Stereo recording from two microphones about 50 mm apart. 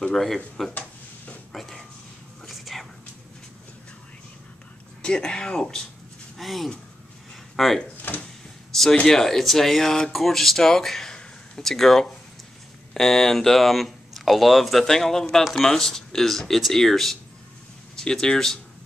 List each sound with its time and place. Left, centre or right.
0.1 s speech: centre
1.5 s a sound: centre
2.4 s whispering: centre
5.0 s speech: centre
6.3 s speech: centre
8.0 s a sound: left
9.0 s speech: centre